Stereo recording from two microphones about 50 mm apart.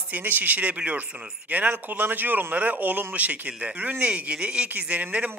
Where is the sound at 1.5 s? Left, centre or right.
Right.